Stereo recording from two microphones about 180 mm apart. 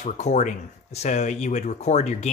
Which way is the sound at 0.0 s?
40° left (ahead or behind).